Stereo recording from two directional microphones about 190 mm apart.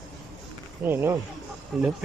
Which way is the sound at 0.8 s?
10° right (ahead or behind).